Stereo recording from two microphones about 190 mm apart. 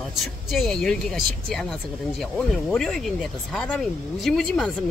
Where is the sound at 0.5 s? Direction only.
Centre (ahead or behind).